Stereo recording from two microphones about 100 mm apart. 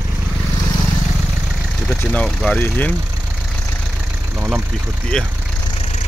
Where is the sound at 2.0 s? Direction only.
15° left (ahead or behind).